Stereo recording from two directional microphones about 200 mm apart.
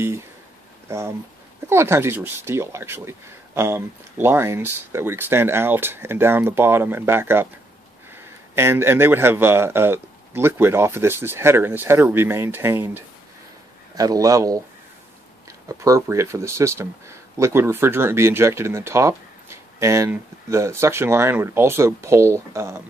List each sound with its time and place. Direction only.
0.8 s speech: 15° right (ahead or behind)
15.8 s speech: 15° right (ahead or behind)